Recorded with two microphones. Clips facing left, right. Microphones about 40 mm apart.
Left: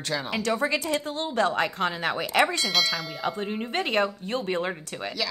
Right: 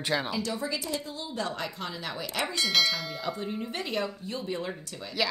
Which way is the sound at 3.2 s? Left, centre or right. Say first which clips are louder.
Left 6 dB; left.